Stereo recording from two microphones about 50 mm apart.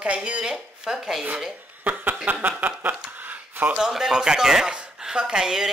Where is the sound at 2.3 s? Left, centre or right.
Right.